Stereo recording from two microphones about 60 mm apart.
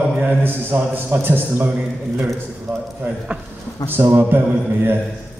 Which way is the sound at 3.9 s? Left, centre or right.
Right.